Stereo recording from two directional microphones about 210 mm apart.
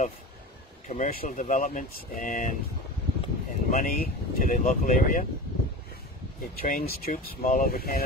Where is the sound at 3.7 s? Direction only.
40° left (ahead or behind).